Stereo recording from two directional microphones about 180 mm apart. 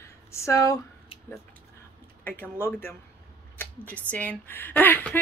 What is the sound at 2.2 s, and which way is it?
Speech, 10° left (ahead or behind).